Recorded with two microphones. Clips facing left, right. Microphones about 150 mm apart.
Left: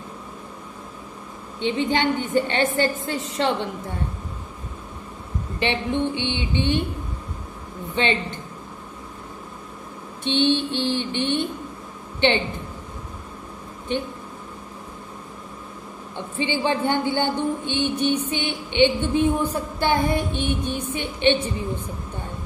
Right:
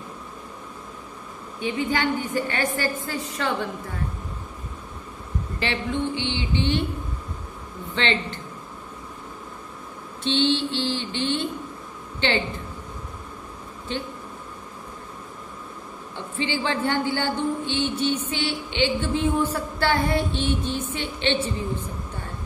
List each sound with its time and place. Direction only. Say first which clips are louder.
1.6 s a woman's voice: left 3 dB; 25° left (ahead or behind)
5.6 s a woman's voice: left 3 dB; 20° left (ahead or behind)
7.9 s speech: left 2 dB; 15° left (ahead or behind)
10.2 s speech: left 2 dB; 15° left (ahead or behind)
16.3 s speech: left 3 dB; 15° left (ahead or behind)